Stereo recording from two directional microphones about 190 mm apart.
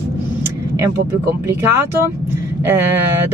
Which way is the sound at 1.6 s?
15° right (ahead or behind).